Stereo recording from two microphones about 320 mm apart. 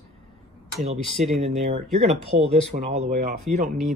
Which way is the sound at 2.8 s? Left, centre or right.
Right.